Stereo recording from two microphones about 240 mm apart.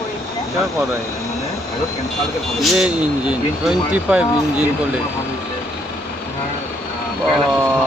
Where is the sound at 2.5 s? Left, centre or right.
Centre.